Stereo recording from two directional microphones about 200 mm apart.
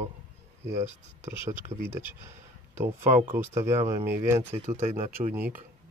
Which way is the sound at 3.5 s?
15° right (ahead or behind).